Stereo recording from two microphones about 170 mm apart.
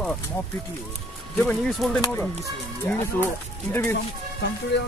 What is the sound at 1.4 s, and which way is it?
Speech, centre (ahead or behind).